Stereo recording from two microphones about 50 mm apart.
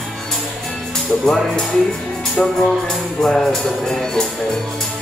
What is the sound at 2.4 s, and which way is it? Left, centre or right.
Music, left.